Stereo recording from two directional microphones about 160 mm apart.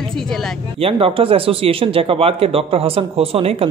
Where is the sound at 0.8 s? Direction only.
35° right (ahead or behind).